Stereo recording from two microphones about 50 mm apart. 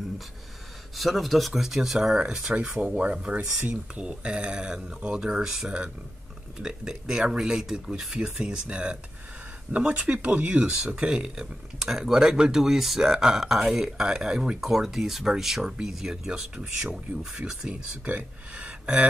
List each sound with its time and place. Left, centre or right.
0.9 s speech: centre
18.0 s speech: right
18.9 s speech: centre